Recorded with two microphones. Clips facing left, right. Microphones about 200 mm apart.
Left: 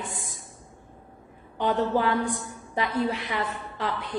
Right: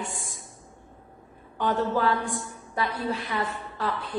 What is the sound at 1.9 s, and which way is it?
A woman's voice, 20° left (ahead or behind).